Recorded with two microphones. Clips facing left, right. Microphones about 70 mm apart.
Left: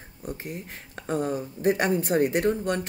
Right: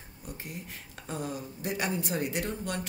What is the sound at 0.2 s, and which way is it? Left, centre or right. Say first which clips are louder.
A woman's voice: left 7 dB; left.